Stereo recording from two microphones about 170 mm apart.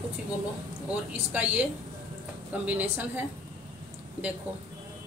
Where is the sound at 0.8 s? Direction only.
10° right (ahead or behind).